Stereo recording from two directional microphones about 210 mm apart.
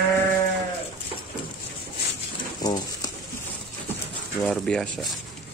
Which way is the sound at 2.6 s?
20° left (ahead or behind).